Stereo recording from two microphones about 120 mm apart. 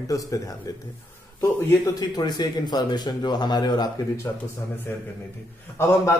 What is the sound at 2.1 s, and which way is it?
Speech, 35° left (ahead or behind).